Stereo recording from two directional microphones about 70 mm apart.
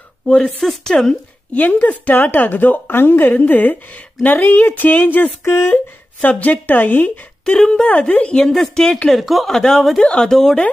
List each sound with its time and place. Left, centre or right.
0.5 s a woman's voice: centre; by 5.8 s left
6.2 s a woman's voice: left
7.5 s speech: centre